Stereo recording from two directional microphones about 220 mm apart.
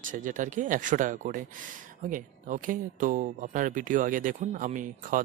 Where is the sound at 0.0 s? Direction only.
35° right (ahead or behind).